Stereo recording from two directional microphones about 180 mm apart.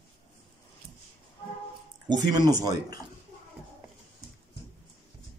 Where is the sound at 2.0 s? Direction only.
25° right (ahead or behind).